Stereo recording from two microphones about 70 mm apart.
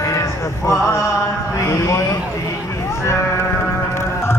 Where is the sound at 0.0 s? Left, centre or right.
Left.